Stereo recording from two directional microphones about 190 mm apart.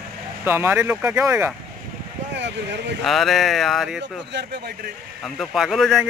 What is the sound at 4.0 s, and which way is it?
Speech, 65° right (ahead or behind).